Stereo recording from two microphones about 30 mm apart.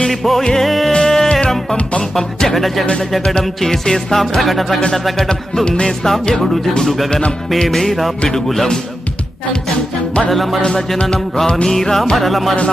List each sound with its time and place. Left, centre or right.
0.1 s music: centre
0.4 s music: centre
0.7 s music: centre
2.1 s speech: centre
3.6 s music: centre
4.4 s speech: centre
5.9 s music: centre
10.3 s speech: centre
11.4 s music: left
11.7 s music: centre
12.2 s speech: centre